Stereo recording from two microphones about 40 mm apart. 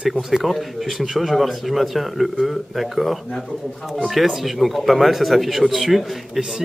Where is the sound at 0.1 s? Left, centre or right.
Centre.